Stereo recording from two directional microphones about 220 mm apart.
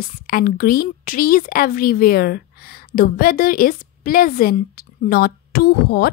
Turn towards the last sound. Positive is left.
turn(degrees=45)  # may be behind; listen again after turning